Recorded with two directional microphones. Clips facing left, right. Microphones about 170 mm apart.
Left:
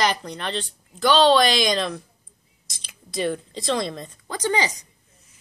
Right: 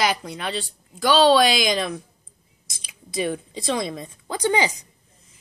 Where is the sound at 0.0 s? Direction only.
5° right (ahead or behind).